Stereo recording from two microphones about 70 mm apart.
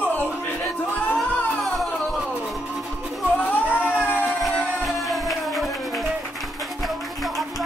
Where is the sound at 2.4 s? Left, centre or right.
Centre.